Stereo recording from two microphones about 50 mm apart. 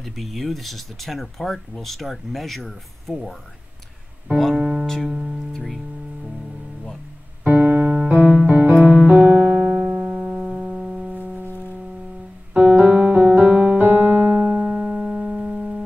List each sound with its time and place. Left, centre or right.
0.0 s speech: centre
4.6 s music: centre
7.4 s keyboard: right
8.5 s music: right
8.8 s music: right
10.1 s music: centre
11.1 s music: right
12.5 s piano: right
13.5 s music: right
13.7 s keyboard: right
14.6 s music: centre